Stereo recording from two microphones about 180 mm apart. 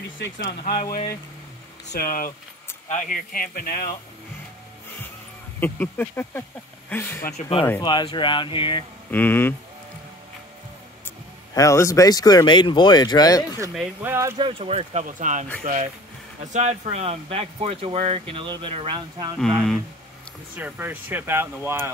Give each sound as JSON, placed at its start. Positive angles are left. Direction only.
{"t": 2.0, "sound": "speech", "side_deg": 50}
{"t": 5.6, "sound": "speech", "side_deg": 10}
{"t": 7.3, "sound": "speech", "side_deg": 30}
{"t": 9.1, "sound": "speech", "side_deg": 10}
{"t": 11.1, "sound": "speech", "side_deg": 15}
{"t": 13.7, "sound": "speech", "side_deg": -15}
{"t": 14.4, "sound": "speech", "side_deg": -30}
{"t": 19.4, "sound": "speech", "side_deg": 0}
{"t": 20.5, "sound": "speech", "side_deg": -10}